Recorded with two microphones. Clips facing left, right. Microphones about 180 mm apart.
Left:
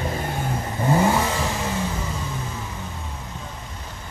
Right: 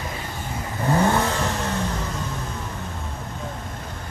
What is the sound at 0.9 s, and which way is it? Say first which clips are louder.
Vehicle: right 1 dB; 5° left (ahead or behind).